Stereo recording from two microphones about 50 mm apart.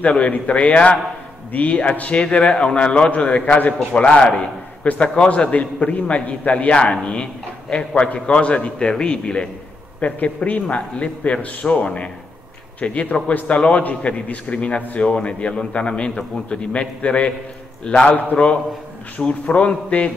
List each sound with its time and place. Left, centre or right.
0.0 s a man's voice: left